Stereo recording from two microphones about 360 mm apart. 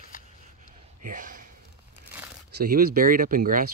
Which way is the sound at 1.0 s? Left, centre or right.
Right.